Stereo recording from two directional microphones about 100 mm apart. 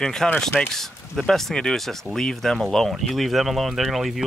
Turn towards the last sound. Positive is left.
turn(degrees=0)  # may be behind; listen again after turning